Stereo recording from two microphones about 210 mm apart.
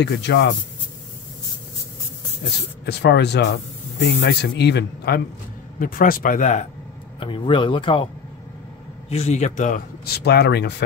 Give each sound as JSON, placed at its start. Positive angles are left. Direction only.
{"t": 0.0, "sound": "speech", "side_deg": 55}
{"t": 2.8, "sound": "speech", "side_deg": 50}
{"t": 7.2, "sound": "speech", "side_deg": 25}
{"t": 9.1, "sound": "speech", "side_deg": 30}